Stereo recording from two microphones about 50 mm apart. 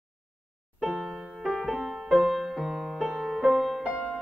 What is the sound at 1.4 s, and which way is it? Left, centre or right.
Music, centre.